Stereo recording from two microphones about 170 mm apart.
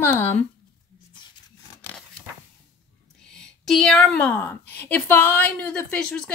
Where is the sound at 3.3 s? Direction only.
5° left (ahead or behind).